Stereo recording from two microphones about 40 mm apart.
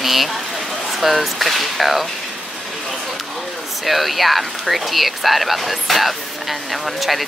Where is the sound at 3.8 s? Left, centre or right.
Centre.